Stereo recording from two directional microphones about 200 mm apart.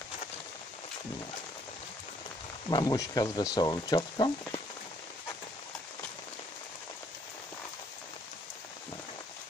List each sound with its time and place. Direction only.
2.7 s speech: 20° left (ahead or behind)